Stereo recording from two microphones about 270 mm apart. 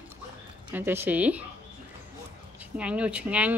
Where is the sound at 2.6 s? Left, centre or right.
Centre.